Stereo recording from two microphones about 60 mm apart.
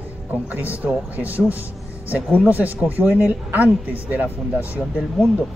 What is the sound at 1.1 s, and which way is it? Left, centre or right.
Speech, right.